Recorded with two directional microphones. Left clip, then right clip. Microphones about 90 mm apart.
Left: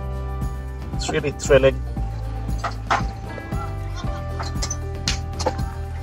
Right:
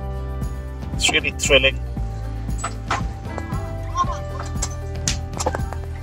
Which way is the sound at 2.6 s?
30° left (ahead or behind).